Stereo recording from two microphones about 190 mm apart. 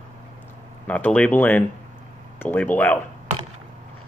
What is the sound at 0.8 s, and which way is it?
Speech, 5° left (ahead or behind).